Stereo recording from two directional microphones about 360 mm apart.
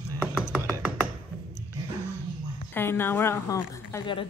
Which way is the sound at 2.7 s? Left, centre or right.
Centre.